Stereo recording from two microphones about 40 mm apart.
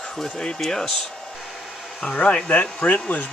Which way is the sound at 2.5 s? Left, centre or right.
Left.